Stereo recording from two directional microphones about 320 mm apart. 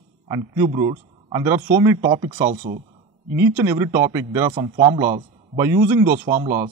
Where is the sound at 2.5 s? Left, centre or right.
Right.